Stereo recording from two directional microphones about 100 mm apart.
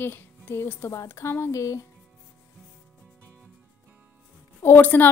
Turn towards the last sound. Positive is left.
turn(degrees=20)  # may be behind; listen again after turning